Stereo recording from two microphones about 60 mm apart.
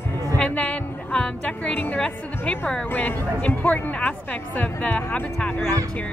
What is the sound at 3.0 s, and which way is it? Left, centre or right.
Speech, left.